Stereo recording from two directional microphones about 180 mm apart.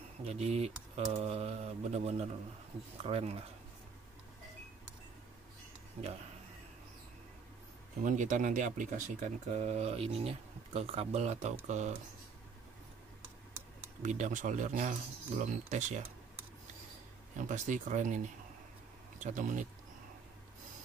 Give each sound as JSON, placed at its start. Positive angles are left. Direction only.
{"t": 0.2, "sound": "speech", "side_deg": -35}
{"t": 8.0, "sound": "speech", "side_deg": -45}
{"t": 14.0, "sound": "speech", "side_deg": -45}
{"t": 17.4, "sound": "speech", "side_deg": -45}